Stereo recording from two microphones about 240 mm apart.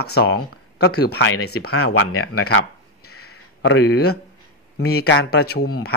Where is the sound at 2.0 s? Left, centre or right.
Left.